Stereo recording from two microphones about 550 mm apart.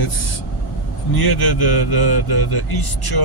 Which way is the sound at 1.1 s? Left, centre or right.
Left.